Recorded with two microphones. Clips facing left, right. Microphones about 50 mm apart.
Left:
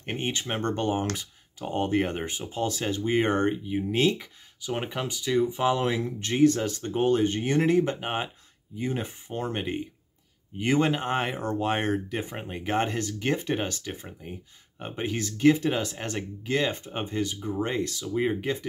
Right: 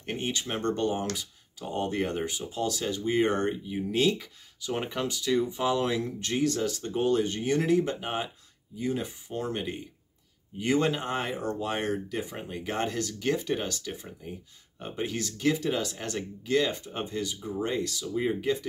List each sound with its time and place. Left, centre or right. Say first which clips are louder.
0.0 s speech: left 1 dB; left
17.4 s speech: left 3 dB; left
17.6 s speech: left 1 dB; left